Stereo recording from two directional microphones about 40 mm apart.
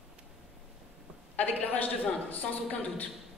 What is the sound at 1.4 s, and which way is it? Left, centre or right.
A man's voice, left.